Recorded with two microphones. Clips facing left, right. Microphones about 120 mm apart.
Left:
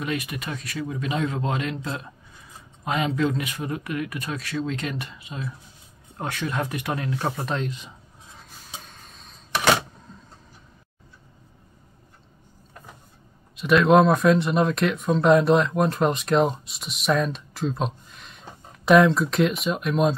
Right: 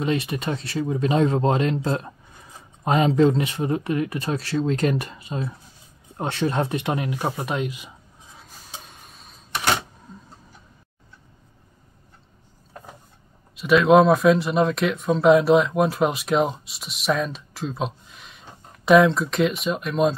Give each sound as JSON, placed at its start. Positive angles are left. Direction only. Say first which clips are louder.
{"t": 0.0, "sound": "speech", "louder": "right 5 dB", "side_deg": -25}
{"t": 6.1, "sound": "speech", "louder": "right 5 dB", "side_deg": -30}
{"t": 7.2, "sound": "a sound", "louder": "right 1 dB", "side_deg": -10}
{"t": 13.6, "sound": "speech", "louder": "right 2 dB", "side_deg": 0}